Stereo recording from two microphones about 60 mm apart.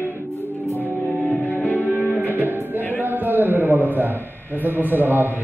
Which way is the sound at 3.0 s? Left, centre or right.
Right.